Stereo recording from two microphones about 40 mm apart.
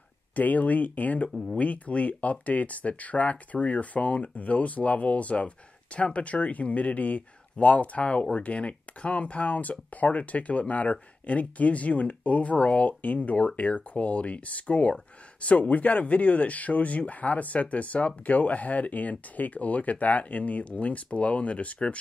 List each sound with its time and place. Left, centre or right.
0.4 s speech: left